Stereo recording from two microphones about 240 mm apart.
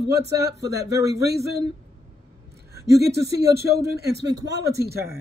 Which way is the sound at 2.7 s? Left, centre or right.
Right.